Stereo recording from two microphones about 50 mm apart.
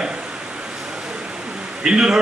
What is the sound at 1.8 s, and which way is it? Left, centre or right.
Speech, centre.